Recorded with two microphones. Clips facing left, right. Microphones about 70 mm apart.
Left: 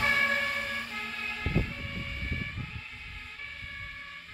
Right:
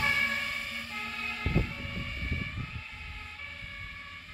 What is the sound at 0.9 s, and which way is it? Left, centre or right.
Vehicle, centre.